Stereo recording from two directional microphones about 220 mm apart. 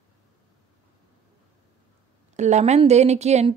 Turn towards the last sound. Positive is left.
turn(degrees=-30)  # may be behind; listen again after turning